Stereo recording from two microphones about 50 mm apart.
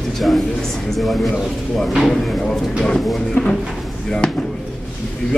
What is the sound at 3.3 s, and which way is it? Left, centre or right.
Speech, centre.